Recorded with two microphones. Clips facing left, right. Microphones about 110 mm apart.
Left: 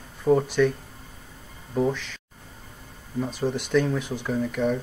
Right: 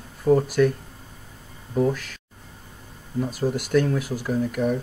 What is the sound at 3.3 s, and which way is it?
Speech, 10° right (ahead or behind).